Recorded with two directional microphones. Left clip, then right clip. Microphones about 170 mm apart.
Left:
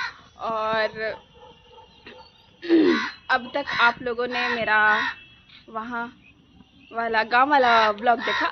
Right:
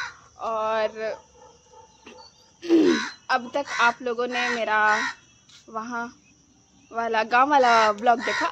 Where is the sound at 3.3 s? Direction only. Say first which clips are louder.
Left 1 dB; 15° right (ahead or behind).